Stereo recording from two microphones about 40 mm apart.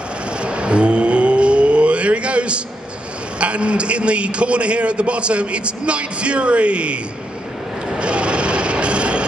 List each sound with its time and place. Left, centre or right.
0.4 s a sound: right
3.3 s a man's voice: right
8.0 s vehicle: right